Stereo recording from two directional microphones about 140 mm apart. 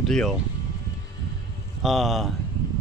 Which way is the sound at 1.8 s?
Centre (ahead or behind).